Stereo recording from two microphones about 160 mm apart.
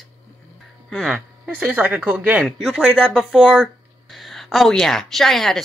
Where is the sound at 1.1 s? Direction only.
10° right (ahead or behind).